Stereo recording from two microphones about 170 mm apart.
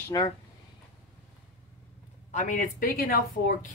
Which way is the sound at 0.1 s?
20° left (ahead or behind).